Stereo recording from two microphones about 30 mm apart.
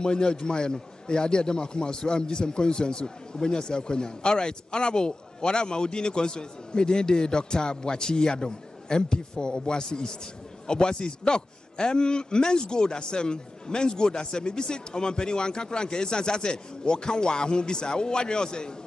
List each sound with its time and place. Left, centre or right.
0.0 s a man's voice: left